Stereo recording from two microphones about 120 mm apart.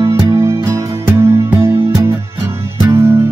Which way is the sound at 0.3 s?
25° right (ahead or behind).